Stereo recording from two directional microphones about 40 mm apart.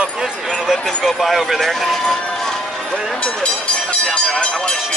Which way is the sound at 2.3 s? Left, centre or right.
Centre.